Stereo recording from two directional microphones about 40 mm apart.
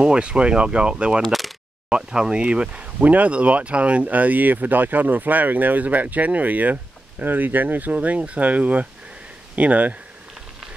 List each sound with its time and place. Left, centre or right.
0.0 s speech: right